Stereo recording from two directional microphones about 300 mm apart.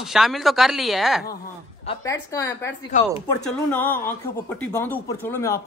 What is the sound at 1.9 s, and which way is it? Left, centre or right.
Speech, centre.